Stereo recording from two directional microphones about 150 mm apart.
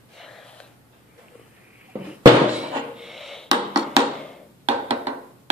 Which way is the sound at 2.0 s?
10° right (ahead or behind).